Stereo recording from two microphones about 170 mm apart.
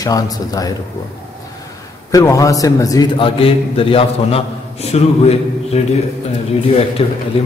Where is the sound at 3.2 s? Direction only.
35° left (ahead or behind).